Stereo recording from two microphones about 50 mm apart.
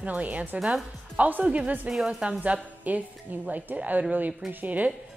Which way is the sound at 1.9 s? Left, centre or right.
Centre.